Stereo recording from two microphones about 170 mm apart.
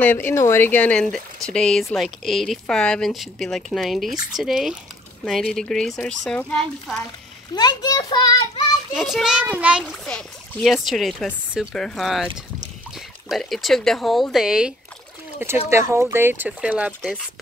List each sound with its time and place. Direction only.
0.0 s a child's voice: 10° left (ahead or behind)
7.5 s a child's voice: 25° left (ahead or behind)
8.9 s a child's voice: centre (ahead or behind)
13.3 s a child's voice: centre (ahead or behind)